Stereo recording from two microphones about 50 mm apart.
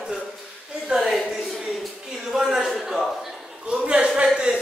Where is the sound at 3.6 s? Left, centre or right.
Right.